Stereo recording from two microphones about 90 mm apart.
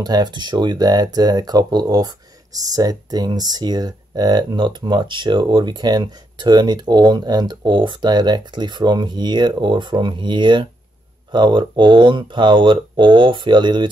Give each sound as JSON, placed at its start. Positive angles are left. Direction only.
{"t": 0.0, "sound": "speech", "side_deg": -50}